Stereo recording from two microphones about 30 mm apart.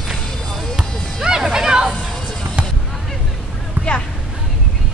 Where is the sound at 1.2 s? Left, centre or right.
Centre.